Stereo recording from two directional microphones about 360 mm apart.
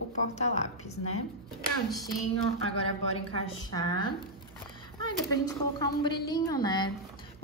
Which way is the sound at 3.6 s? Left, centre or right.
Centre.